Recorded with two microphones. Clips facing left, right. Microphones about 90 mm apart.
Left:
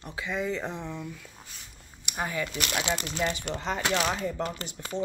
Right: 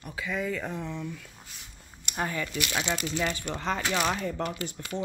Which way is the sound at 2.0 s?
15° left (ahead or behind).